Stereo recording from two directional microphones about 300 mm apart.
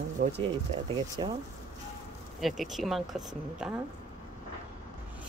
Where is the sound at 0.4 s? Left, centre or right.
Centre.